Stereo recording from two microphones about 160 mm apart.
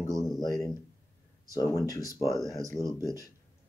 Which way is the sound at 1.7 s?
20° left (ahead or behind).